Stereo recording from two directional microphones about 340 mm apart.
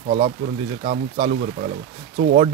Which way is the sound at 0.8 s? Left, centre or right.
Centre.